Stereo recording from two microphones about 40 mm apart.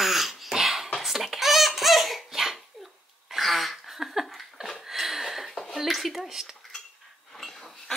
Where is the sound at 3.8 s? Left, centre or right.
Centre.